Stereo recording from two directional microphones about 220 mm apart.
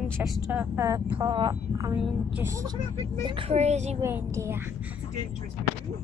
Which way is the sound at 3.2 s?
25° right (ahead or behind).